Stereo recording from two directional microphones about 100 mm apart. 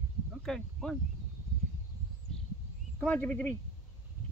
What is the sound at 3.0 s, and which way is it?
Speech, 15° left (ahead or behind).